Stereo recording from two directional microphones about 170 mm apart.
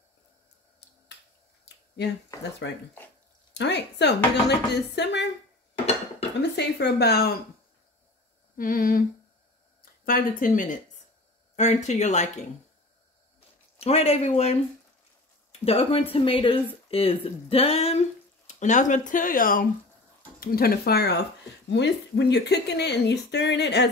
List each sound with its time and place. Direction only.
2.3 s speech: 20° left (ahead or behind)
3.5 s speech: 85° left
6.5 s speech: 80° left
8.5 s humming: 55° left (ahead or behind)
10.0 s speech: 55° left (ahead or behind)
13.7 s speech: 35° left (ahead or behind)
15.6 s speech: 35° left (ahead or behind); by 23.9 s 90° left